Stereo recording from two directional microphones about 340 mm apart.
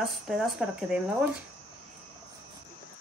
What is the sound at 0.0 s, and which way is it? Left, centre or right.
A woman's voice, centre.